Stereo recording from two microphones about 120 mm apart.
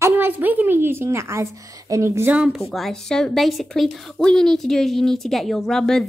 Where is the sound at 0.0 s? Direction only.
15° right (ahead or behind).